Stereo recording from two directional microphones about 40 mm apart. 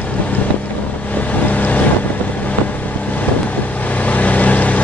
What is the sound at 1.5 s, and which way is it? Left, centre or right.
Boat, left.